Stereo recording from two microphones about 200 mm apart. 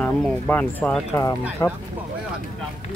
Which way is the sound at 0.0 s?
5° left (ahead or behind).